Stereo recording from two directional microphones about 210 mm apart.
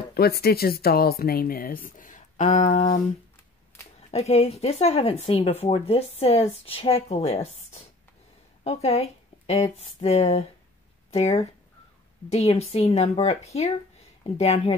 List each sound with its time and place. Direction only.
0.1 s speech: 50° left (ahead or behind)
4.1 s speech: 30° left (ahead or behind)